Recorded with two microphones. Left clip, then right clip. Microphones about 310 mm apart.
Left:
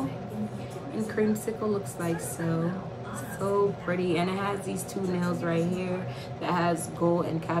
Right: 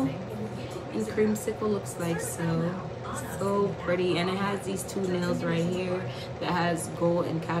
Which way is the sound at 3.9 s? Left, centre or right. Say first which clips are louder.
Right 1 dB; centre.